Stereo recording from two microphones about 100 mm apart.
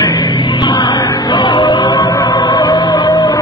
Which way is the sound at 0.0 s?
40° left (ahead or behind).